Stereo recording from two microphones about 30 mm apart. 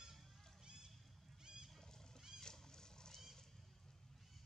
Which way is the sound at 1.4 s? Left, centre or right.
Right.